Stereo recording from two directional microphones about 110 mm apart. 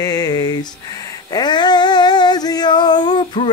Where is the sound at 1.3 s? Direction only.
40° left (ahead or behind).